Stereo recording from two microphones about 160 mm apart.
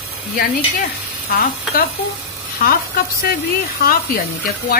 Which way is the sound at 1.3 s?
70° left (ahead or behind).